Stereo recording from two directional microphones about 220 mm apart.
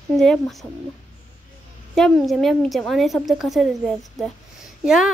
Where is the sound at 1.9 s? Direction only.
Centre (ahead or behind).